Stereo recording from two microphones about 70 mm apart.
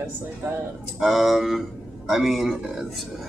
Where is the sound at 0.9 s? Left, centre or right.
Centre.